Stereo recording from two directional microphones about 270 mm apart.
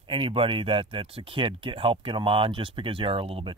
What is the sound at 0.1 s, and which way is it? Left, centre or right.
Speech, centre.